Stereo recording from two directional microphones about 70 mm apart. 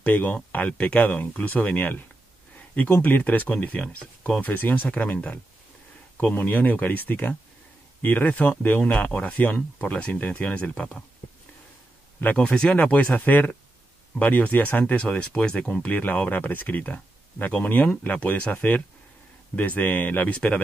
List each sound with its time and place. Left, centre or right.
0.0 s speech: left
12.2 s speech: left